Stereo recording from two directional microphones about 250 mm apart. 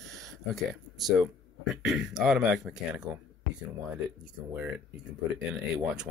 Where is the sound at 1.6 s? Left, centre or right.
Centre.